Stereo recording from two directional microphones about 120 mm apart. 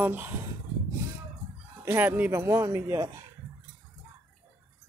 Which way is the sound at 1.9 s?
15° right (ahead or behind).